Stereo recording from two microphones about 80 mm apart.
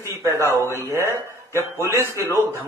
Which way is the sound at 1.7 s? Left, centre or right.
Left.